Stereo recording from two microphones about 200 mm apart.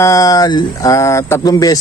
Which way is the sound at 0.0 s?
15° left (ahead or behind).